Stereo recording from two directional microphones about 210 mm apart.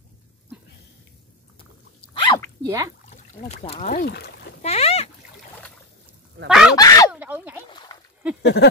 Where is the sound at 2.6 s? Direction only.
15° right (ahead or behind).